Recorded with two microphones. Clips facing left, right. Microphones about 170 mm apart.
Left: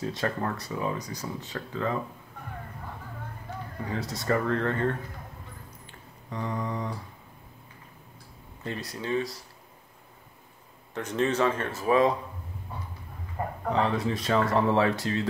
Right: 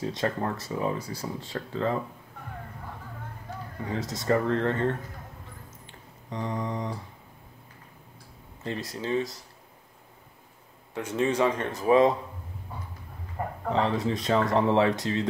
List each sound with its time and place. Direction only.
0.0 s speech: 25° right (ahead or behind)
4.0 s speech: centre (ahead or behind)
4.3 s speech: 25° right (ahead or behind)
5.9 s a sound: 20° right (ahead or behind)
8.6 s speech: 20° right (ahead or behind)
11.0 s speech: 10° right (ahead or behind)
13.7 s speech: 25° right (ahead or behind)